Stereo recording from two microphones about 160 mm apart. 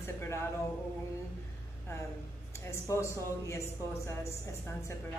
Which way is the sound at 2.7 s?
15° left (ahead or behind).